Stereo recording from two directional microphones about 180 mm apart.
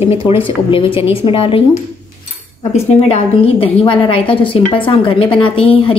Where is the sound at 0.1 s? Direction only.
35° left (ahead or behind).